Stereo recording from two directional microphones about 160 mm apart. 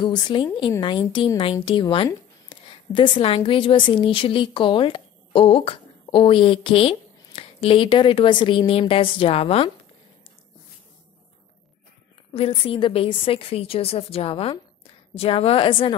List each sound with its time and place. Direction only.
0.0 s a woman's voice: 30° left (ahead or behind)
12.3 s a woman's voice: 35° left (ahead or behind)